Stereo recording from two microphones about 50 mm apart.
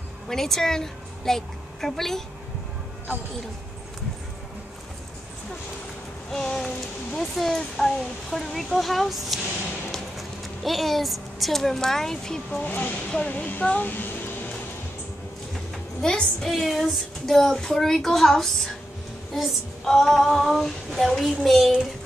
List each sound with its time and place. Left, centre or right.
0.3 s a woman's voice: centre
6.3 s child singing: centre
7.2 s speech: centre
12.6 s speech: left
16.0 s child singing: centre
19.3 s speech: centre